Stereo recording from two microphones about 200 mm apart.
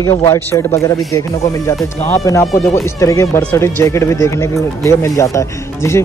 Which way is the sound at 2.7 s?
15° left (ahead or behind).